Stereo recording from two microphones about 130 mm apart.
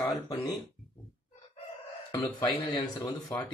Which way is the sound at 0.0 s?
25° left (ahead or behind).